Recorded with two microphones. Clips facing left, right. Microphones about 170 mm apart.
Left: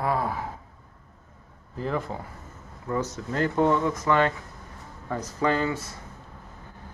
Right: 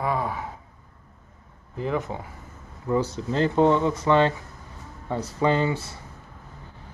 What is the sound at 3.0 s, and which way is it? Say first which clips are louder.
Speech: right 3 dB; 30° right (ahead or behind).